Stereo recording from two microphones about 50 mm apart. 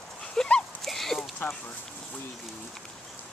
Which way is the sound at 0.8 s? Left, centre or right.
Centre.